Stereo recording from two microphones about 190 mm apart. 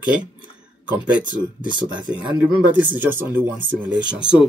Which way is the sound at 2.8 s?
10° right (ahead or behind).